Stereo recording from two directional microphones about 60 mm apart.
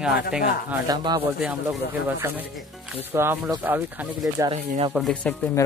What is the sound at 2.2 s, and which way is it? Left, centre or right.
Speech, right.